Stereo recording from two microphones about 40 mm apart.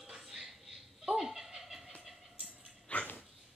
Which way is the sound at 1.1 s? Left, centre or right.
Centre.